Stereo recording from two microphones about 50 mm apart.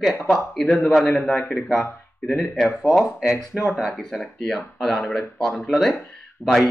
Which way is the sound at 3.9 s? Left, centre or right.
Centre.